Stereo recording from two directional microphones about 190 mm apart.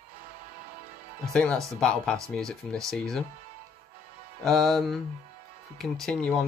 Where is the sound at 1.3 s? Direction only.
5° left (ahead or behind).